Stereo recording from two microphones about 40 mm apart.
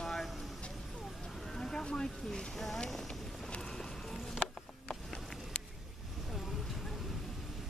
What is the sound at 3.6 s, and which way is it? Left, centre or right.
Music, centre.